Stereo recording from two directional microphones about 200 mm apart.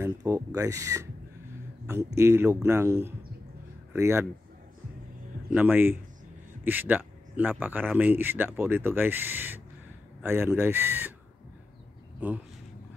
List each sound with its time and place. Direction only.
0.0 s speech: 15° right (ahead or behind)
2.1 s speech: 15° right (ahead or behind)
5.5 s speech: 10° right (ahead or behind)